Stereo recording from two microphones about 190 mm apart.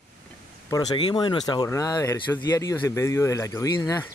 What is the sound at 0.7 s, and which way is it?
Speech, 20° left (ahead or behind).